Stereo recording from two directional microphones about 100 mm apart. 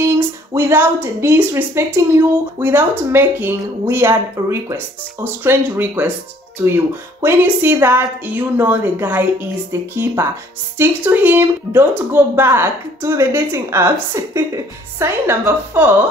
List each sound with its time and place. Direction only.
0.6 s a woman's voice: 25° right (ahead or behind)